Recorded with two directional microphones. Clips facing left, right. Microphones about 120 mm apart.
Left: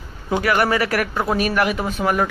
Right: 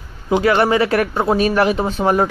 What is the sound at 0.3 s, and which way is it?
Speech, 25° right (ahead or behind).